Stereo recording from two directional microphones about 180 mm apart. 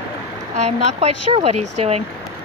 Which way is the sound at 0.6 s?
35° right (ahead or behind).